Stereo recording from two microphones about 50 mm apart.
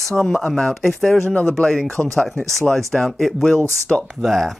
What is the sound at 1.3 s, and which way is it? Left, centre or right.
Speech, left.